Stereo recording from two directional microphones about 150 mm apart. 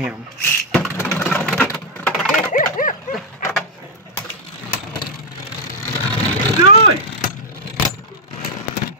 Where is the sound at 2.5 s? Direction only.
60° left (ahead or behind).